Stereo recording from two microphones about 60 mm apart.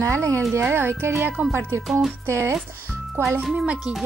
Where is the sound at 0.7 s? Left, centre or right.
Right.